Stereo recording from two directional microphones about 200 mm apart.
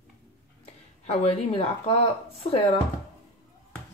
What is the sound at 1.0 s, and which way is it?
Speech, 30° left (ahead or behind).